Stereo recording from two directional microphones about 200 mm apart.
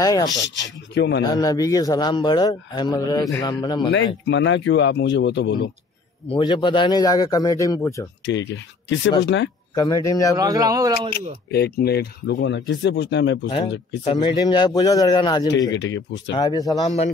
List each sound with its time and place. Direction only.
0.0 s a man's voice: 20° left (ahead or behind)
0.4 s speech: 60° left (ahead or behind)
1.2 s a man's voice: 20° left (ahead or behind)
4.3 s speech: 65° left (ahead or behind)
6.2 s a man's voice: 25° left (ahead or behind)
8.3 s speech: 65° left (ahead or behind)
9.8 s speech: 15° left (ahead or behind)
10.3 s speech: 15° right (ahead or behind)
11.0 s speech: 50° left (ahead or behind)
14.0 s a man's voice: 20° left (ahead or behind)
15.7 s speech: 65° left (ahead or behind)
16.3 s a man's voice: 20° left (ahead or behind)
16.8 s a man's voice: 35° left (ahead or behind)